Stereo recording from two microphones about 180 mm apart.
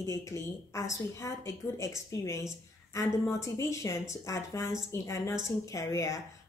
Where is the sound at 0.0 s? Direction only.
15° left (ahead or behind).